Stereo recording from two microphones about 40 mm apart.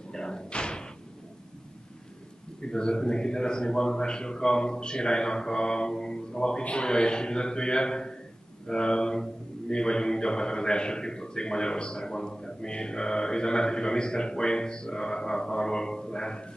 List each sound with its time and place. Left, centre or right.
0.1 s slam: centre
2.6 s speech: left